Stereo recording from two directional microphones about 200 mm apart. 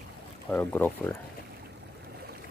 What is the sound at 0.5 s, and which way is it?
Speech, 10° left (ahead or behind).